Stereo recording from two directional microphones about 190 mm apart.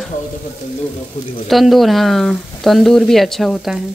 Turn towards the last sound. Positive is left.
turn(degrees=0)  # may be behind; listen again after turning